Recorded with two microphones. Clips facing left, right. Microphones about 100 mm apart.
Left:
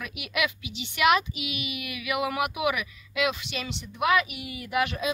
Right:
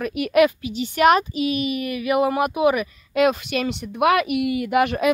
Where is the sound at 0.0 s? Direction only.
45° right (ahead or behind).